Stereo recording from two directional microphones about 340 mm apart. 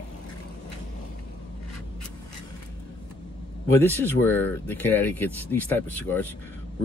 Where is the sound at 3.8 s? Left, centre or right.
Centre.